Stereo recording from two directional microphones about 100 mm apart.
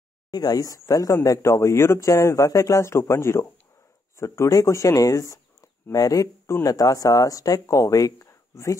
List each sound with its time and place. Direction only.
0.3 s speech: 40° left (ahead or behind)